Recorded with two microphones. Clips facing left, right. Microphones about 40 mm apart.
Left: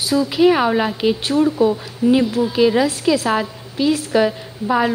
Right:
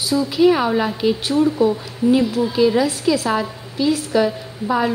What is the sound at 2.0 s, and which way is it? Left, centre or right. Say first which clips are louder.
A woman's voice: left 1 dB; left.